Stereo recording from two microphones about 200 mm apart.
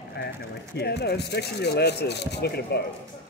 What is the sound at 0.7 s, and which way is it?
A man's voice, 55° left (ahead or behind).